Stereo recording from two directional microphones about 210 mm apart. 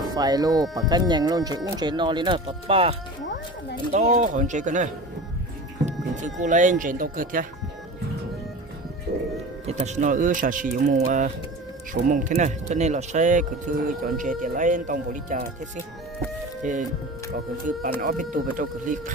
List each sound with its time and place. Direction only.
0.1 s speech: 20° right (ahead or behind); by 7.4 s 40° right (ahead or behind)
9.1 s music: 50° right (ahead or behind)
9.7 s speech: 35° right (ahead or behind)
16.6 s speech: 35° right (ahead or behind)